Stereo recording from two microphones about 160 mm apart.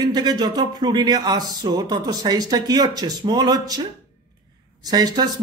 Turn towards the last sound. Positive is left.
turn(degrees=-25)  # may be behind; listen again after turning